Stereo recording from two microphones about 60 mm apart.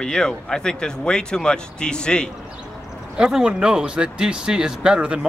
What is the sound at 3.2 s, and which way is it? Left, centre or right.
Speech, centre.